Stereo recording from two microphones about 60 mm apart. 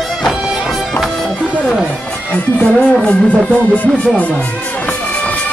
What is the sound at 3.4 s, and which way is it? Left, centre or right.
Music, left.